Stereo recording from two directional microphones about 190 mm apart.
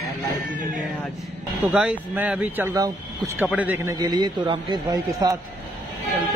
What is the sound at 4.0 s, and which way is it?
A man's voice, 20° right (ahead or behind).